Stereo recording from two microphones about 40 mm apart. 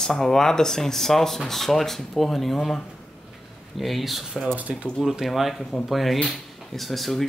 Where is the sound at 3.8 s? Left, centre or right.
Centre.